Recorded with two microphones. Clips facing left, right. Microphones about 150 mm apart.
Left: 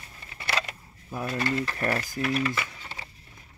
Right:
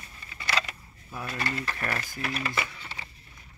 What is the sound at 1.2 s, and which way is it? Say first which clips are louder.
Speech: left 5 dB; 25° left (ahead or behind).